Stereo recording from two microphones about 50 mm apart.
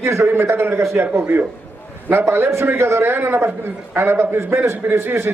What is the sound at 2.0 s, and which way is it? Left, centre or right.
A man's voice, right.